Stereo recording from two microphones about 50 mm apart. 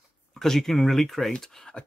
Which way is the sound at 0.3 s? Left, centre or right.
Centre.